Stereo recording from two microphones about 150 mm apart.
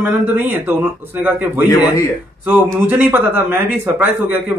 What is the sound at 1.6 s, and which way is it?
Speech, 20° left (ahead or behind).